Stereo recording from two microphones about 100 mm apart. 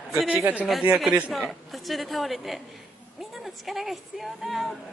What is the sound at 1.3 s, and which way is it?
Speech, centre (ahead or behind).